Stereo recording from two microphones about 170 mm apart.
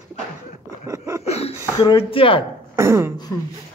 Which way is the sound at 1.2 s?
40° left (ahead or behind).